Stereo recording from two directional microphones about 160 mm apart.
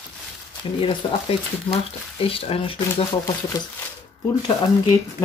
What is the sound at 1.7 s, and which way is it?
Speech, 35° left (ahead or behind).